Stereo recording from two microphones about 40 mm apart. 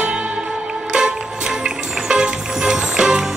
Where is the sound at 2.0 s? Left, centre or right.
Centre.